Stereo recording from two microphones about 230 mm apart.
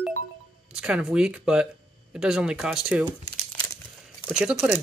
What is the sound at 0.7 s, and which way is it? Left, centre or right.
Speech, centre.